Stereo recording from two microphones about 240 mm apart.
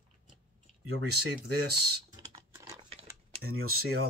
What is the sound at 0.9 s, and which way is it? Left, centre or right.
Speech, right.